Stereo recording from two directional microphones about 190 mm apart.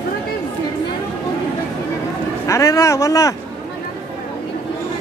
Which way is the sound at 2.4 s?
15° left (ahead or behind).